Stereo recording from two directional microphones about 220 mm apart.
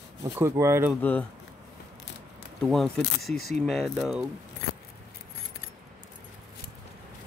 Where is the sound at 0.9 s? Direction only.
5° left (ahead or behind).